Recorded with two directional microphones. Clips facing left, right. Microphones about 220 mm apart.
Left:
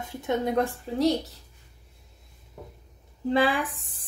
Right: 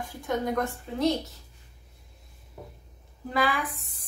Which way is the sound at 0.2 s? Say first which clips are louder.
Left 3 dB; 25° left (ahead or behind).